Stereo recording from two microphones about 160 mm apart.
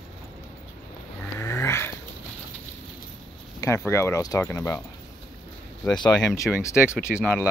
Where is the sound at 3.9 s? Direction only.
15° left (ahead or behind).